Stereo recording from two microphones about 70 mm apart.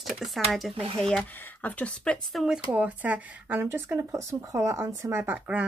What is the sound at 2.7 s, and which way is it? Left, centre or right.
Speech, right.